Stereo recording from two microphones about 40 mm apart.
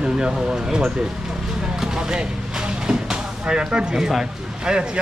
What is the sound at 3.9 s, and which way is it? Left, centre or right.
Speech, centre.